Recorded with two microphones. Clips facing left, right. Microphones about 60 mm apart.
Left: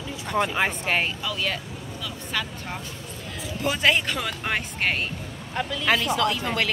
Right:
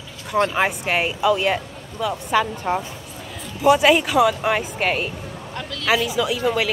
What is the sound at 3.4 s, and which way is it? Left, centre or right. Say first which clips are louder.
Speech: right 8 dB; centre.